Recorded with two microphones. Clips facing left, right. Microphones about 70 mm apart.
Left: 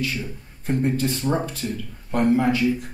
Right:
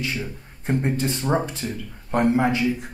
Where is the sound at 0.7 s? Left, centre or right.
Right.